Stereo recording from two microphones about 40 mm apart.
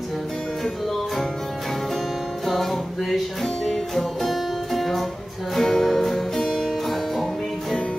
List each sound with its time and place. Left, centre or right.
2.4 s music: centre